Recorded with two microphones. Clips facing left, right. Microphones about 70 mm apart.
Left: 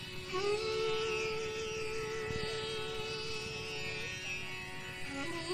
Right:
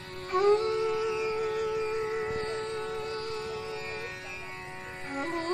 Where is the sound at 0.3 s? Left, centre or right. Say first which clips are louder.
Right 10 dB; right.